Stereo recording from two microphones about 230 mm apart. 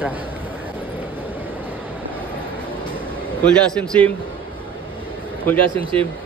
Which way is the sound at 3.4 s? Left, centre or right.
Centre.